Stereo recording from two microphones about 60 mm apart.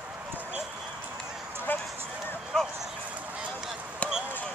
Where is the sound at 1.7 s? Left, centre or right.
Left.